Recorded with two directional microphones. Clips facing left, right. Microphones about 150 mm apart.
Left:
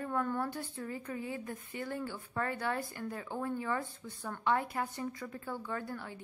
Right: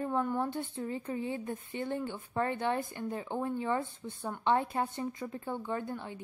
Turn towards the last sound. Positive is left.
turn(degrees=-20)  # may be behind; listen again after turning